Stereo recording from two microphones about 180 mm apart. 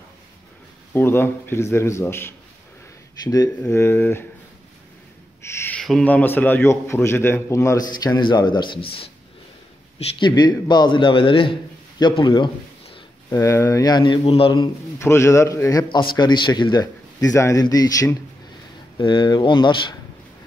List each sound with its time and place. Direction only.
0.9 s a man's voice: 10° left (ahead or behind)
3.6 s a man's voice: 15° left (ahead or behind)
5.4 s a sound: 15° left (ahead or behind)
5.8 s a man's voice: 5° left (ahead or behind); by 12.4 s 25° left (ahead or behind)
13.3 s a man's voice: 15° left (ahead or behind)